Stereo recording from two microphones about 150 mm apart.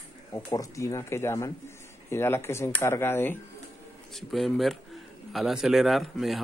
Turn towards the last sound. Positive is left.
turn(degrees=0)  # may be behind; listen again after turning